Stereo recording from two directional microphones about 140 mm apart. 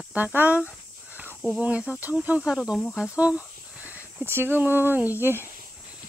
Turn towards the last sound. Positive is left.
turn(degrees=-15)  # may be behind; listen again after turning